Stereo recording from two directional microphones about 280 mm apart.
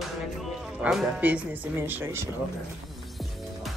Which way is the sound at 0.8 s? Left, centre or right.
Centre.